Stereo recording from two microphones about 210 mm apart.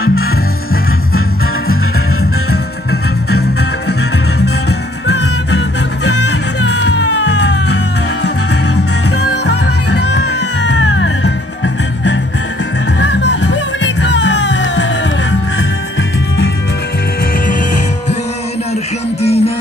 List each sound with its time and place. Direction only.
0.0 s music: 75° left (ahead or behind)
2.9 s music: 50° left (ahead or behind)
4.6 s music: 55° left (ahead or behind)
9.5 s music: 55° left (ahead or behind)
19.2 s music: 30° left (ahead or behind)